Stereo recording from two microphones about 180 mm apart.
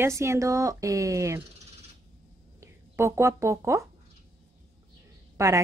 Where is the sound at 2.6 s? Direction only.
15° right (ahead or behind).